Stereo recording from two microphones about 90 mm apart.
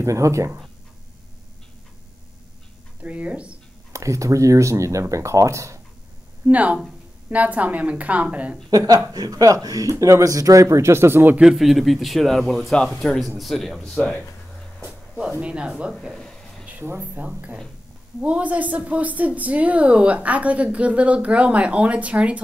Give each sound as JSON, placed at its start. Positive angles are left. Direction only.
{"t": 0.0, "sound": "speech", "side_deg": -35}
{"t": 3.0, "sound": "a woman's voice", "side_deg": -15}
{"t": 3.9, "sound": "speech", "side_deg": -35}
{"t": 6.4, "sound": "a woman's voice", "side_deg": -15}
{"t": 8.6, "sound": "speech", "side_deg": -45}
{"t": 11.3, "sound": "speech", "side_deg": -5}
{"t": 14.9, "sound": "music", "side_deg": -10}
{"t": 15.4, "sound": "a woman's voice", "side_deg": -10}
{"t": 16.2, "sound": "a sound", "side_deg": 5}
{"t": 16.6, "sound": "a woman's voice", "side_deg": -25}